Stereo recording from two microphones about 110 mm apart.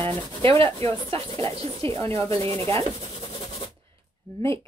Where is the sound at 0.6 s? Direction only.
25° left (ahead or behind).